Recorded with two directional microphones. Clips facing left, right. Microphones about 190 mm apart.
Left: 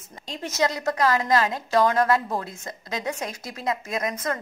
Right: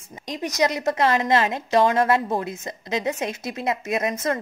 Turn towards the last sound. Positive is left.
turn(degrees=-25)  # may be behind; listen again after turning